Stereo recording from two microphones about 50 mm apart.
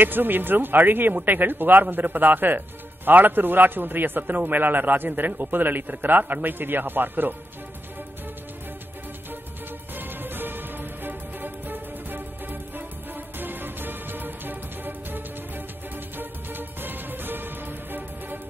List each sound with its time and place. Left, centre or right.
0.0 s a man's voice: right
9.9 s music: right